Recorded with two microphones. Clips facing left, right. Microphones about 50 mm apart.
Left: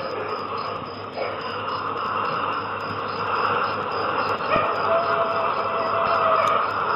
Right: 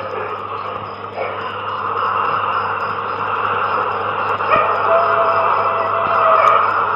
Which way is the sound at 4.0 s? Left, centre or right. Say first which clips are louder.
Right 5 dB; right.